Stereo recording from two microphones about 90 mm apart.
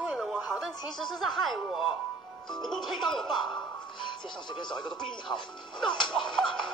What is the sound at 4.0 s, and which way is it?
Speech, 60° left (ahead or behind).